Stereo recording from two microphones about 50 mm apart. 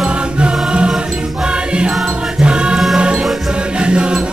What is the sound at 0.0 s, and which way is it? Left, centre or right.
Music, right.